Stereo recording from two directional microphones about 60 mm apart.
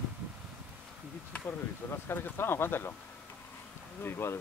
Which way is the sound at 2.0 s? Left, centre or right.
Left.